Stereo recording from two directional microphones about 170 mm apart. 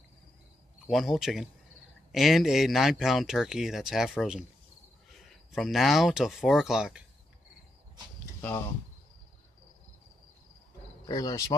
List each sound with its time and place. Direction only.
0.8 s speech: centre (ahead or behind)
11.1 s speech: 20° left (ahead or behind)